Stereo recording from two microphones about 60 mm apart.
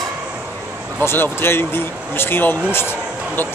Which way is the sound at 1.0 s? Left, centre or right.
Left.